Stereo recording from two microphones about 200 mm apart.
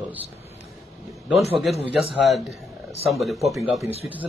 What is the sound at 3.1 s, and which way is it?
Speech, centre (ahead or behind).